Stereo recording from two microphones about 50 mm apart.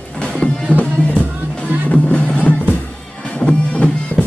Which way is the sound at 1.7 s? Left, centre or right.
Right.